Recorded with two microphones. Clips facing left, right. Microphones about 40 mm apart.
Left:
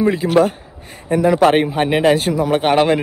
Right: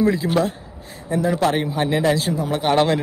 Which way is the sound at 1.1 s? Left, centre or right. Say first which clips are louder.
Left 7 dB; left.